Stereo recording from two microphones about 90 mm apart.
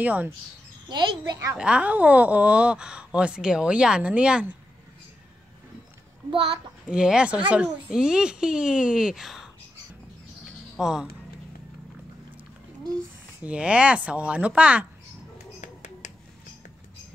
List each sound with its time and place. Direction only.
0.0 s speech: 20° right (ahead or behind)
0.8 s a child's voice: 55° right (ahead or behind)
1.6 s speech: 15° right (ahead or behind)
6.9 s speech: 10° right (ahead or behind)
10.8 s speech: 5° right (ahead or behind)
13.4 s speech: 15° right (ahead or behind)